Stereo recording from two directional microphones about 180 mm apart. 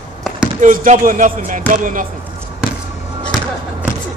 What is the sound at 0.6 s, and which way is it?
Speech, 45° right (ahead or behind).